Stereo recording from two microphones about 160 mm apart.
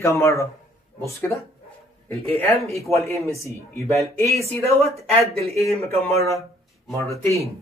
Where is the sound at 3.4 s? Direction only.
20° left (ahead or behind).